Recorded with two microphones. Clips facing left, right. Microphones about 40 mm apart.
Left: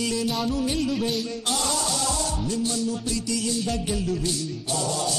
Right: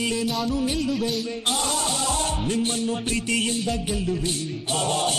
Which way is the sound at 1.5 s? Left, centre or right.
Right.